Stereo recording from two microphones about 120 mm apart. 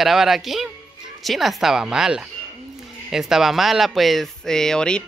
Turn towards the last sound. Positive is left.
turn(degrees=5)  # may be behind; listen again after turning